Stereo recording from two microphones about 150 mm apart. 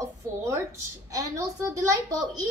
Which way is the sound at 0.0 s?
20° right (ahead or behind).